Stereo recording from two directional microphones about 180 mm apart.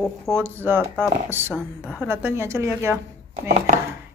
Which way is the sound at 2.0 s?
15° right (ahead or behind).